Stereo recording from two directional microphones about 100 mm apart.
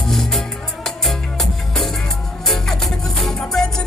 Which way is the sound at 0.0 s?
5° left (ahead or behind).